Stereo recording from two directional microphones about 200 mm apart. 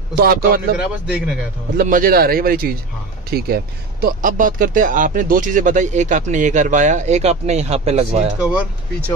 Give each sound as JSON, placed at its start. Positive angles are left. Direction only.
{"t": 0.2, "sound": "speech", "side_deg": -45}
{"t": 0.7, "sound": "speech", "side_deg": -5}
{"t": 1.8, "sound": "speech", "side_deg": -45}
{"t": 8.4, "sound": "speech", "side_deg": -5}